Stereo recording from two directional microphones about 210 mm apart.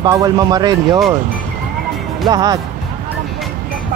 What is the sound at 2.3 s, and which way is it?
Speech, 20° right (ahead or behind).